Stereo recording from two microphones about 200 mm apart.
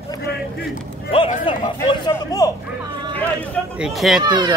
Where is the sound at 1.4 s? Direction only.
25° left (ahead or behind).